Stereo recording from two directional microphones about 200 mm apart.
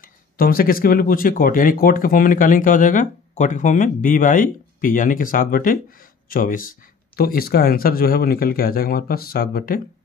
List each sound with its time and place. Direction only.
0.0 s speech: 45° left (ahead or behind)